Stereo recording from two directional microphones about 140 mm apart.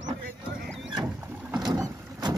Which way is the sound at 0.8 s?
5° right (ahead or behind).